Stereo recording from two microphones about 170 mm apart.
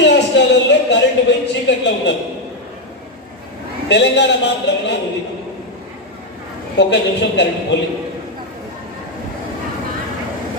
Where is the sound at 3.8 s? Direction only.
90° left.